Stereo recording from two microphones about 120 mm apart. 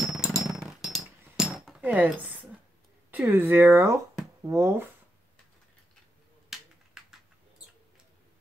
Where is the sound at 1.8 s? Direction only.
10° right (ahead or behind).